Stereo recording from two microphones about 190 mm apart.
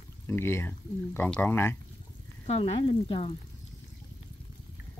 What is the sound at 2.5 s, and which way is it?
Speech, 30° left (ahead or behind).